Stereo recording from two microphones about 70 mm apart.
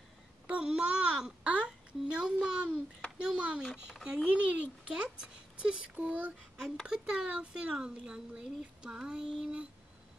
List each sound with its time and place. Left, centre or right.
0.5 s a child's voice: centre
6.9 s speech: centre